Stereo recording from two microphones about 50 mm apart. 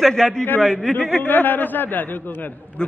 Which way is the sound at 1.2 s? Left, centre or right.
Left.